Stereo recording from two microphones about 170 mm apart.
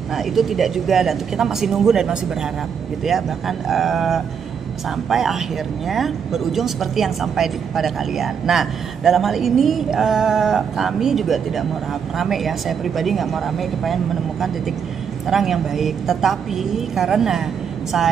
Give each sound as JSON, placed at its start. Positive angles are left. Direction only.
{"t": 0.1, "sound": "a woman's voice", "side_deg": 0}
{"t": 15.2, "sound": "a woman's voice", "side_deg": 0}